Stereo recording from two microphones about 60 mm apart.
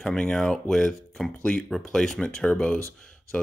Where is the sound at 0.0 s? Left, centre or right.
Centre.